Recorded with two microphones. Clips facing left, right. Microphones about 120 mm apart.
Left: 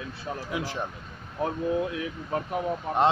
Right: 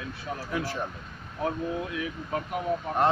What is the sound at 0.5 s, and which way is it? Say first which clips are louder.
Speech: right 1 dB; 15° left (ahead or behind).